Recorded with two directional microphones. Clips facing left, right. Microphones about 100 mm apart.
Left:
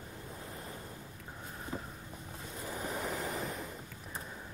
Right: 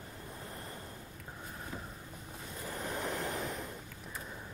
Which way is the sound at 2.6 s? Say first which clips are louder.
Even; 5° left (ahead or behind).